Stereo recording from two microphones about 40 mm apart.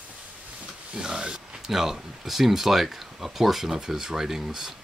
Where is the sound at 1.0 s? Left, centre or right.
Right.